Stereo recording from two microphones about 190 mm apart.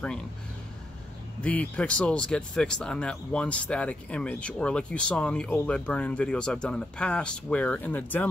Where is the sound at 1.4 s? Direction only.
5° left (ahead or behind).